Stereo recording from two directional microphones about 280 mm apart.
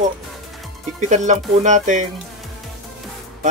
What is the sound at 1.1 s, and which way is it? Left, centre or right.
A man's voice, right.